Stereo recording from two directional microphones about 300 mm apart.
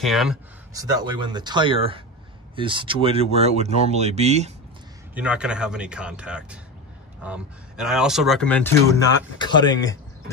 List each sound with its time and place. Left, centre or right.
0.0 s speech: centre
0.7 s speech: centre
5.1 s speech: centre